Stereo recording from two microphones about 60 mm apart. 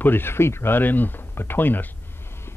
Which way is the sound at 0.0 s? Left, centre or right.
Left.